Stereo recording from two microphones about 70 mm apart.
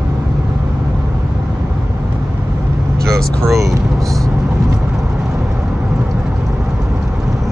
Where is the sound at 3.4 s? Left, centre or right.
Centre.